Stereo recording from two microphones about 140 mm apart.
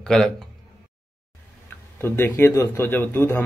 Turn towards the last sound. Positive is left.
turn(degrees=15)  # may be behind; listen again after turning